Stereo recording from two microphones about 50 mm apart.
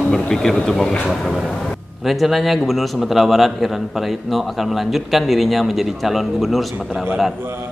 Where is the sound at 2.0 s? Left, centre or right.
Centre.